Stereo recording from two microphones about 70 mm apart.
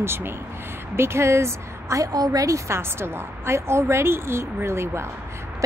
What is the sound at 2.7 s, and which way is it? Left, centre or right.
A woman's voice, right.